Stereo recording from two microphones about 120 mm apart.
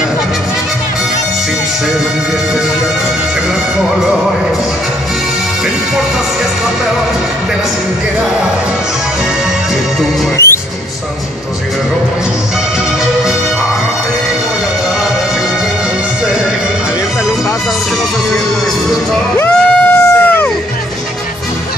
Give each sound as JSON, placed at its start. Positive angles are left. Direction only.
{"t": 10.3, "sound": "music", "side_deg": 20}
{"t": 19.3, "sound": "music", "side_deg": 15}